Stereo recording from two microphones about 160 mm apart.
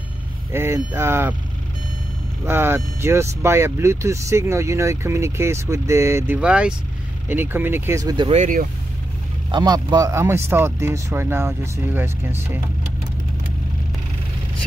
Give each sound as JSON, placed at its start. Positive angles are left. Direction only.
{"t": 0.5, "sound": "speech", "side_deg": -15}
{"t": 2.4, "sound": "speech", "side_deg": -15}
{"t": 8.3, "sound": "speech", "side_deg": -50}
{"t": 9.5, "sound": "speech", "side_deg": -30}